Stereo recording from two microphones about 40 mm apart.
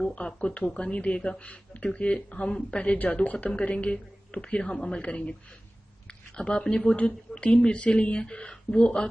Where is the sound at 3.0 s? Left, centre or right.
Left.